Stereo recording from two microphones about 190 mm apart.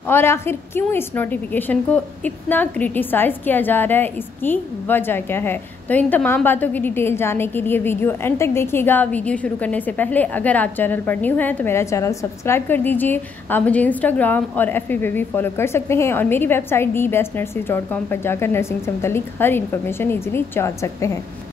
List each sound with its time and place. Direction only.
0.0 s a woman's voice: 10° left (ahead or behind)